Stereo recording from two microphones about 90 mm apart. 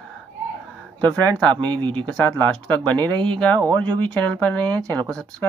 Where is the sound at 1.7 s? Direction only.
65° right (ahead or behind).